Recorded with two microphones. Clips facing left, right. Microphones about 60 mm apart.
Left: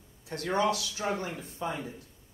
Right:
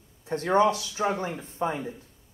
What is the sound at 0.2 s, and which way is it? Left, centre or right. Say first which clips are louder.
Speech: right 7 dB; right.